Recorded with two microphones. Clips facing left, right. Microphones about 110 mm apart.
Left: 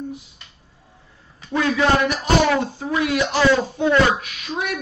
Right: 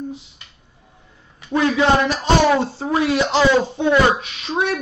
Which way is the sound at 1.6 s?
25° right (ahead or behind).